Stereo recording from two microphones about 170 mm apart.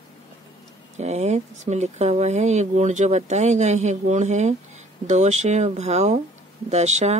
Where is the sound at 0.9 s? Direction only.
40° right (ahead or behind).